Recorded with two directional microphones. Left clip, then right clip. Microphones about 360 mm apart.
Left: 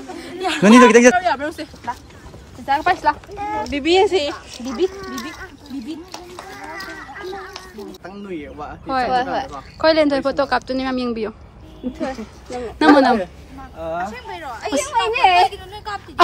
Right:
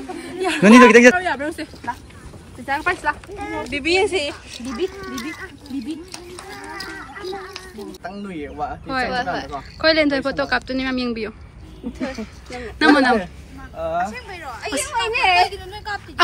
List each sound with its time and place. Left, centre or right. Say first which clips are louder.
0.1 s speech: even; centre
2.6 s speech: left 4 dB; centre
6.5 s a sound: even; centre
8.0 s speech: right 1 dB; right
8.8 s speech: left 4 dB; centre
9.1 s speech: left 4 dB; left
9.8 s speech: left 2 dB; centre
12.4 s speech: left 5 dB; centre
13.7 s speech: right 2 dB; centre
14.1 s speech: left 2 dB; left
15.5 s speech: even; centre